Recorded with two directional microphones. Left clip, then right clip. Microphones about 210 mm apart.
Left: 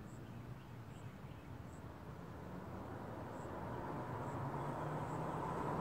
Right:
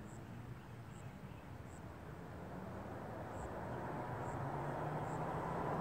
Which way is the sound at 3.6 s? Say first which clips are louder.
Right 1 dB; 45° left (ahead or behind).